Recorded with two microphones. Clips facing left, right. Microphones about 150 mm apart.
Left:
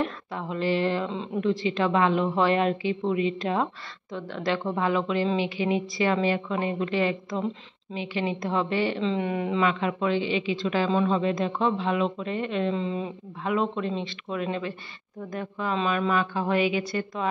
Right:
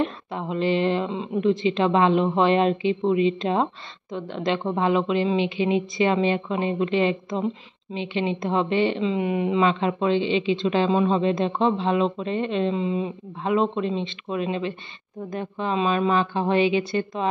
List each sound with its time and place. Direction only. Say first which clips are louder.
0.0 s a woman's voice: right 3 dB; 20° right (ahead or behind)
9.0 s speech: right 3 dB; 10° right (ahead or behind)
9.6 s a woman's voice: right 3 dB; 25° right (ahead or behind)
13.4 s a woman's voice: right 4 dB; 25° right (ahead or behind)